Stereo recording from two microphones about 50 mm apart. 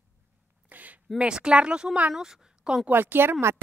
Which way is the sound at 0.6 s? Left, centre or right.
Right.